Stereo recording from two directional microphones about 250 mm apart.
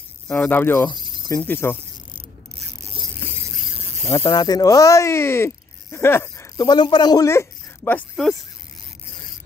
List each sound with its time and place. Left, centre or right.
0.3 s speech: centre
0.9 s cricket: centre
1.3 s speech: centre
4.0 s speech: centre